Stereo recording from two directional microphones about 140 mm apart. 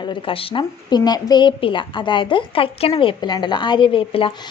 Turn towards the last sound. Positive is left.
turn(degrees=40)  # may be behind; listen again after turning